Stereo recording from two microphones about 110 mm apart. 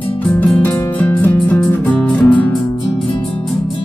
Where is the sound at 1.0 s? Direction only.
15° left (ahead or behind).